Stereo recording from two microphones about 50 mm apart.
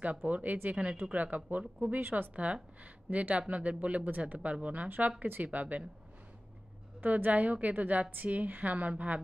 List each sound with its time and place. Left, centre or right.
0.0 s a woman's voice: right
2.3 s speech: right
4.8 s a woman's voice: right
7.0 s a woman's voice: right